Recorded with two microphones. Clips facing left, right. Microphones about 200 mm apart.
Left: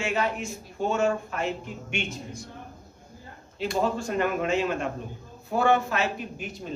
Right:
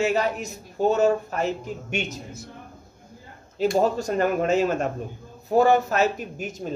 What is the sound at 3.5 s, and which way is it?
A man's voice, 45° right (ahead or behind).